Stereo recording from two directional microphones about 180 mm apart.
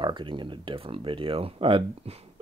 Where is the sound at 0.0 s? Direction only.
25° right (ahead or behind).